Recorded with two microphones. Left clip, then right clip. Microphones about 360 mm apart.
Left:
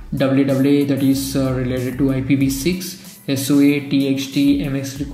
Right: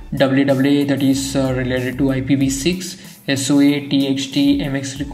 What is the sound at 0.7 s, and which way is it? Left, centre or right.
Speech, centre.